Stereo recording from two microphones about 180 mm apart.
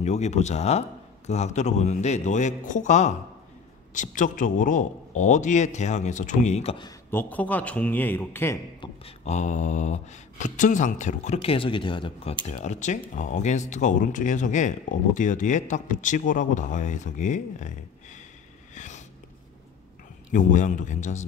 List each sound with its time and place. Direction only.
0.0 s speech: 40° left (ahead or behind)
7.1 s speech: 10° left (ahead or behind)
9.0 s speech: 40° left (ahead or behind)
12.4 s speech: 40° left (ahead or behind)
18.8 s a sound: 40° left (ahead or behind)
20.2 s speech: 45° left (ahead or behind)